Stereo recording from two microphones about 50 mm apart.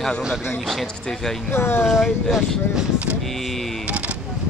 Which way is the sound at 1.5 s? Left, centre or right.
Left.